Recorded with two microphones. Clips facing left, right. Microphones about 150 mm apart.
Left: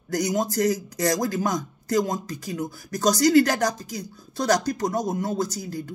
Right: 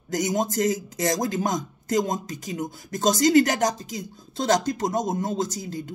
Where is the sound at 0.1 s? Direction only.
20° right (ahead or behind).